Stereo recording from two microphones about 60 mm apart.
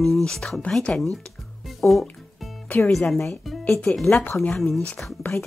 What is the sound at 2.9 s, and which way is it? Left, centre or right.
Speech, centre.